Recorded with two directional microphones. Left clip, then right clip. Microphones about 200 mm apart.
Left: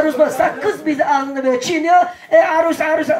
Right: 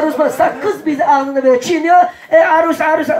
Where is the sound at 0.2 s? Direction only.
40° left (ahead or behind).